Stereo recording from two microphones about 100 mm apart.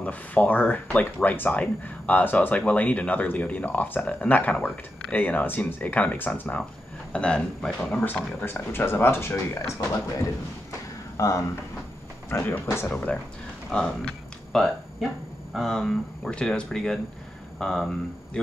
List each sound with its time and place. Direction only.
0.0 s speech: 15° left (ahead or behind)
8.4 s speech: 20° left (ahead or behind)
11.1 s speech: 30° left (ahead or behind)
12.8 s speech: 10° left (ahead or behind)